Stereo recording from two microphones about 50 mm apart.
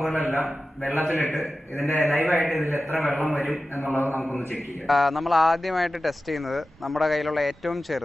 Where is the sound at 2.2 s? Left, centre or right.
Left.